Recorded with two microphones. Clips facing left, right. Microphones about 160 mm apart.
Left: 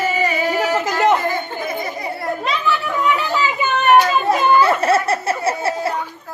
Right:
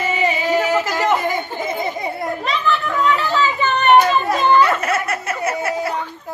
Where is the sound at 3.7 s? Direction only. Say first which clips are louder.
Even; 5° left (ahead or behind).